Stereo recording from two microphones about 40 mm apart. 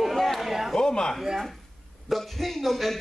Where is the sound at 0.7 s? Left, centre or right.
Centre.